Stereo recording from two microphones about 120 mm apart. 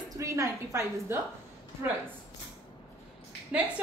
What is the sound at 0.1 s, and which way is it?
A woman's voice, 25° right (ahead or behind).